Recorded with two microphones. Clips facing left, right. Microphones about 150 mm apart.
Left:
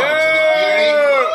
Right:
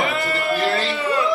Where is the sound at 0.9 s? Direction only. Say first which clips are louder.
Left 10 dB; 75° left (ahead or behind).